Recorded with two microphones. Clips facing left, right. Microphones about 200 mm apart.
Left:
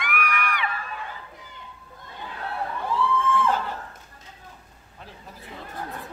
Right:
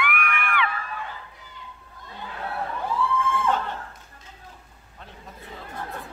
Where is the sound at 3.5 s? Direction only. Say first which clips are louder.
Even; 5° left (ahead or behind).